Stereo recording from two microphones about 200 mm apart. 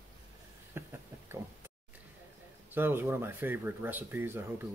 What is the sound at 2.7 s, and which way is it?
Speech, 10° right (ahead or behind).